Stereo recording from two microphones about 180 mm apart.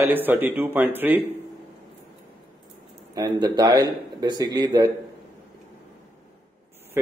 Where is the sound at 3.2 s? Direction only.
25° right (ahead or behind).